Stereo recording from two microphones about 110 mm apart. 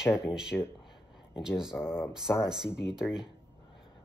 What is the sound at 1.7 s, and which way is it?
Speech, 20° left (ahead or behind).